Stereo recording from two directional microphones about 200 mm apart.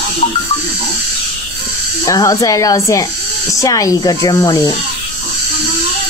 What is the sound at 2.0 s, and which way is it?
Speech, 15° left (ahead or behind).